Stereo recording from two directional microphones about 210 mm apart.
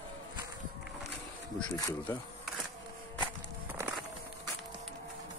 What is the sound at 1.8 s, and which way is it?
Speech, 15° left (ahead or behind).